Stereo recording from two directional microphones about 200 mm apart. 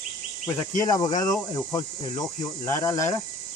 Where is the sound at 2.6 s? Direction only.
15° left (ahead or behind).